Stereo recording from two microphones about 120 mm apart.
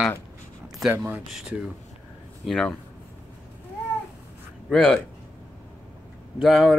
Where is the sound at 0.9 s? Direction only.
15° right (ahead or behind).